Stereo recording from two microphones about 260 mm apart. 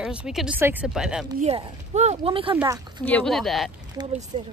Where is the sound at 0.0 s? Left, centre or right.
Centre.